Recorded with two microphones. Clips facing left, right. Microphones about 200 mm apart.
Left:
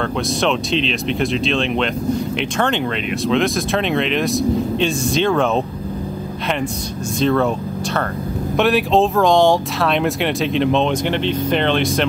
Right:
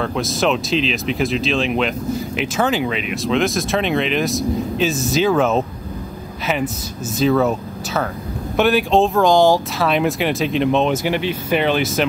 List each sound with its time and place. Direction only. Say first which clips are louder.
0.0 s speech: even; centre (ahead or behind)
7.2 s speech: right 1 dB; 5° right (ahead or behind)